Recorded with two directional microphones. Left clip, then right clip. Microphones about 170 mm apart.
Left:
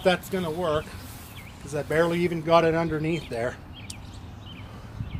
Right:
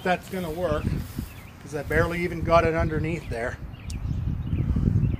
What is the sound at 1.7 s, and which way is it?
Speech, 10° left (ahead or behind).